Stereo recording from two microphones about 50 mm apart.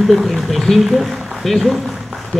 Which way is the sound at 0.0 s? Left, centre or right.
Centre.